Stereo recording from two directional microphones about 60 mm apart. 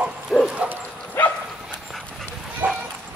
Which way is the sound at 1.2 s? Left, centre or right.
Left.